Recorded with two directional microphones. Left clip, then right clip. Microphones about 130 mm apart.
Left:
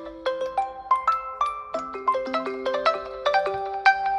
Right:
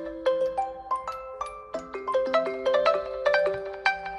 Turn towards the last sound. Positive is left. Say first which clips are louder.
# left 7 dB
turn(degrees=5)  # may be behind; listen again after turning